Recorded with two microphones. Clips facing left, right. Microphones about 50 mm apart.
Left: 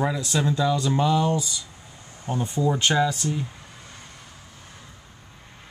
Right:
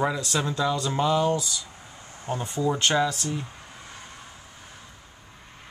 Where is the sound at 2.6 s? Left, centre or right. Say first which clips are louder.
Left 1 dB; centre.